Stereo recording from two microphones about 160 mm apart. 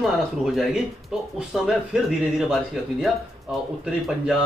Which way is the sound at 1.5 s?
Centre (ahead or behind).